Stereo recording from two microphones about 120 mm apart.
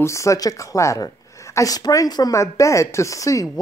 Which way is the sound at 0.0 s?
25° left (ahead or behind).